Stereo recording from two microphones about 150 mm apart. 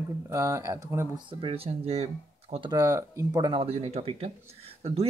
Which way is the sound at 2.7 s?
20° right (ahead or behind).